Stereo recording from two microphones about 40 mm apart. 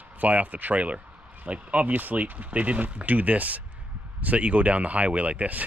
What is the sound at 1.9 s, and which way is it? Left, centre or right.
Speech, right.